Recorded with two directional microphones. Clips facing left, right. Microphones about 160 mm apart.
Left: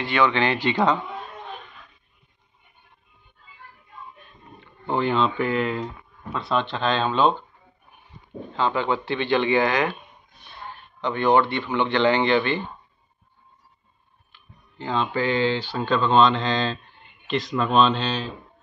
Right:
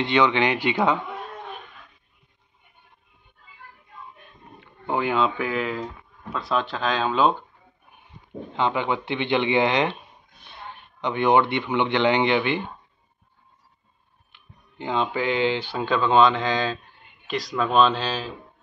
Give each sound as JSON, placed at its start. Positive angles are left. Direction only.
{"t": 0.0, "sound": "speech", "side_deg": -20}
{"t": 4.8, "sound": "speech", "side_deg": -10}
{"t": 8.5, "sound": "speech", "side_deg": -15}
{"t": 11.0, "sound": "speech", "side_deg": -15}
{"t": 14.8, "sound": "speech", "side_deg": -15}